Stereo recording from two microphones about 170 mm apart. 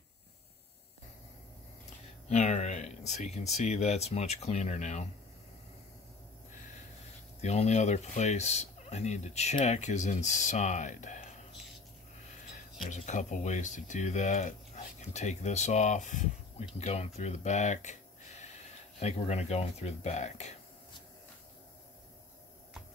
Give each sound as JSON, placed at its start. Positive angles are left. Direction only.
{"t": 2.2, "sound": "a sound", "side_deg": 40}
{"t": 3.2, "sound": "speech", "side_deg": 40}
{"t": 7.4, "sound": "speech", "side_deg": 40}
{"t": 12.9, "sound": "speech", "side_deg": 45}
{"t": 18.9, "sound": "speech", "side_deg": 40}